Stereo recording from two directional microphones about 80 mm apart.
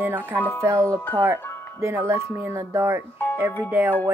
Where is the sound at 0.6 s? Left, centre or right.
Right.